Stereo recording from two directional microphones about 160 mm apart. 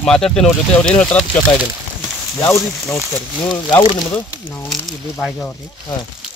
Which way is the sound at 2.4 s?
20° left (ahead or behind).